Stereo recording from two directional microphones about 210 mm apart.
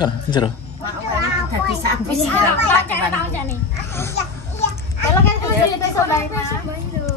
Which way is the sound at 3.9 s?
10° left (ahead or behind).